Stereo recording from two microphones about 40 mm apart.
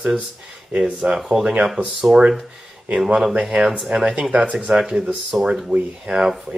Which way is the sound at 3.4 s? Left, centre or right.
Right.